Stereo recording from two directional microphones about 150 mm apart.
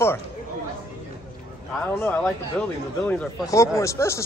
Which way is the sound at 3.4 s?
20° left (ahead or behind).